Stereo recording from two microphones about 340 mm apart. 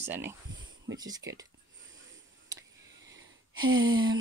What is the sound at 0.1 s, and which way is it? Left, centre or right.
Speech, centre.